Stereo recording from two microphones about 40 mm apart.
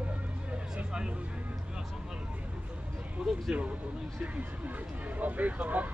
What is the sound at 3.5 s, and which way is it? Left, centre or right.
Music, right.